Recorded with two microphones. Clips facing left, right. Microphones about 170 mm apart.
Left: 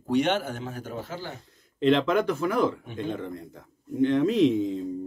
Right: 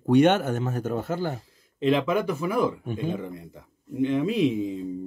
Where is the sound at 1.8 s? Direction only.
5° right (ahead or behind).